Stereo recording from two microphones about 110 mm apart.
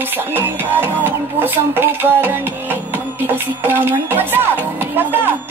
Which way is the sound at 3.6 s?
20° right (ahead or behind).